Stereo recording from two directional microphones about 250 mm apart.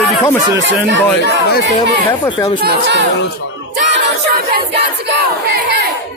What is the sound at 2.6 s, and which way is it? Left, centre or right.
Speech, right.